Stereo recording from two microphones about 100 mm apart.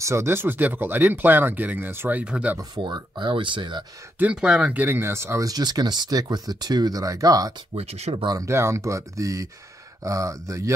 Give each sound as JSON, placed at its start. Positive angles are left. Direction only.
{"t": 0.0, "sound": "speech", "side_deg": -25}
{"t": 2.7, "sound": "speech", "side_deg": -50}
{"t": 4.2, "sound": "speech", "side_deg": -10}
{"t": 5.5, "sound": "speech", "side_deg": -40}
{"t": 7.7, "sound": "speech", "side_deg": -90}
{"t": 8.3, "sound": "speech", "side_deg": -30}